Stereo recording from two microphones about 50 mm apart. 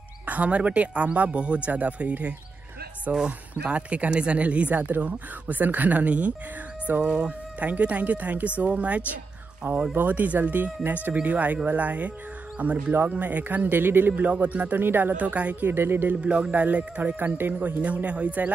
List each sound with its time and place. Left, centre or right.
0.3 s speech: right
14.2 s speech: right
15.1 s speech: right
15.6 s speech: right
16.2 s speech: right